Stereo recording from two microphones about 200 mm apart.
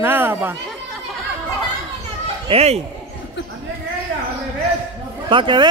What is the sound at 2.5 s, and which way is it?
Speech, 30° right (ahead or behind).